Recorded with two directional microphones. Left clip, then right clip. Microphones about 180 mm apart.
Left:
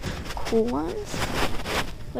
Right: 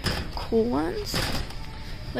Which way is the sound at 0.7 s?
20° right (ahead or behind).